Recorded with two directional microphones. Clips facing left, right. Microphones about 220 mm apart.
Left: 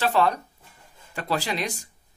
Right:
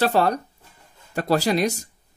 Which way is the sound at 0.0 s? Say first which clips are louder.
Right 3 dB; 40° right (ahead or behind).